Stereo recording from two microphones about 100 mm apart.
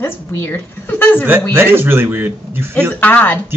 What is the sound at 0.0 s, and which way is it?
A woman's voice, 25° left (ahead or behind).